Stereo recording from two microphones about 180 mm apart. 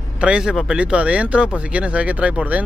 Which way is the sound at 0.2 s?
5° right (ahead or behind).